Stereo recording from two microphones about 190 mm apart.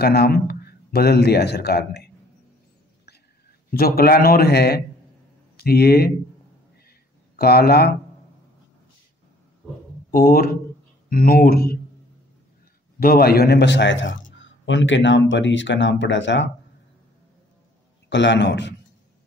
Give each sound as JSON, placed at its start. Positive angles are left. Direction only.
{"t": 0.0, "sound": "a man's voice", "side_deg": 55}
{"t": 3.7, "sound": "a man's voice", "side_deg": 50}
{"t": 6.9, "sound": "a sound", "side_deg": 55}
{"t": 10.1, "sound": "a man's voice", "side_deg": 50}
{"t": 13.0, "sound": "a man's voice", "side_deg": 55}
{"t": 18.1, "sound": "speech", "side_deg": 70}